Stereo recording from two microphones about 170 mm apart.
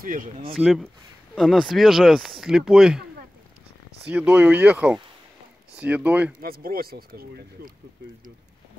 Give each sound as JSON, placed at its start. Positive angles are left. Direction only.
{"t": 0.0, "sound": "speech", "side_deg": -55}
{"t": 0.6, "sound": "speech", "side_deg": 0}
{"t": 4.1, "sound": "speech", "side_deg": -10}
{"t": 6.4, "sound": "speech", "side_deg": -60}